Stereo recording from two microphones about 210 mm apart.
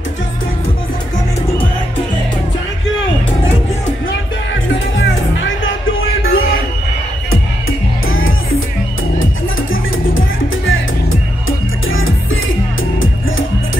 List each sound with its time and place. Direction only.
4.9 s music: 60° left (ahead or behind)
8.1 s music: 70° left (ahead or behind)
10.1 s music: 70° left (ahead or behind)